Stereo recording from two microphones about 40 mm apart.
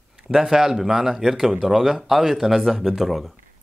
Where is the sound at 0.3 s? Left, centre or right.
Centre.